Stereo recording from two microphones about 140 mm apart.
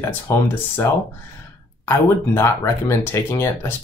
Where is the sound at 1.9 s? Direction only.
20° left (ahead or behind).